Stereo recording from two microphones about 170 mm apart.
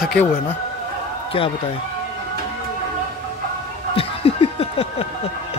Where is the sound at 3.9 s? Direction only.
35° left (ahead or behind).